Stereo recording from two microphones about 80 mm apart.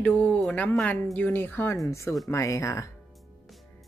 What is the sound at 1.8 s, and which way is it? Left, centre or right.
Speech, left.